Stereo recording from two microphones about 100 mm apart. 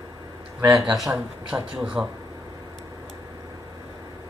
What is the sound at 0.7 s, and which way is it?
A man's voice, 5° right (ahead or behind).